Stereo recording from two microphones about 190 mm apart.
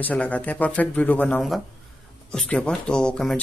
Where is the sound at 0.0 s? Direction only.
10° left (ahead or behind).